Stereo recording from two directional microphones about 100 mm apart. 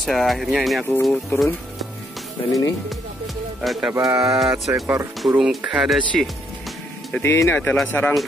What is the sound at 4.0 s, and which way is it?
Speech, 30° right (ahead or behind).